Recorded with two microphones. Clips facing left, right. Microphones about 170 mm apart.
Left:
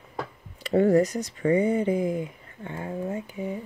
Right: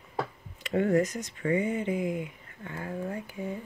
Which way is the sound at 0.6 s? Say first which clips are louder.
Left 5 dB; 35° left (ahead or behind).